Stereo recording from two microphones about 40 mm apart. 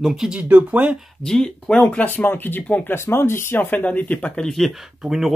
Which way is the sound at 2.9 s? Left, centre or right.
Left.